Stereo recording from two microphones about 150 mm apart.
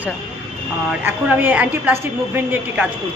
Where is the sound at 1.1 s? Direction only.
10° right (ahead or behind).